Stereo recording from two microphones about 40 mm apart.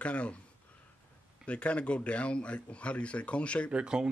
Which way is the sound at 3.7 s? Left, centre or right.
Right.